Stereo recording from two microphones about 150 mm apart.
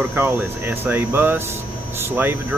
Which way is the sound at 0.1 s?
15° right (ahead or behind).